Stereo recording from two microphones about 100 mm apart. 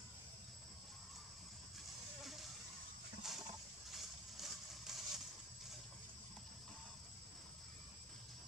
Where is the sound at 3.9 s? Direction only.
Centre (ahead or behind).